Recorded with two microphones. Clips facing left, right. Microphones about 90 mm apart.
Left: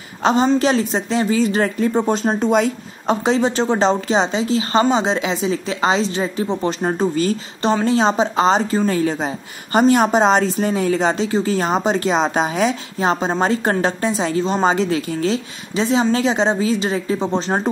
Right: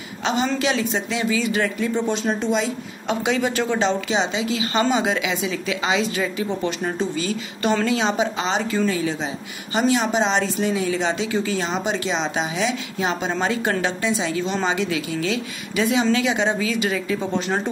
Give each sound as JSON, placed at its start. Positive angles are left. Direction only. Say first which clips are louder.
{"t": 0.2, "sound": "a woman's voice", "louder": "left 7 dB", "side_deg": 40}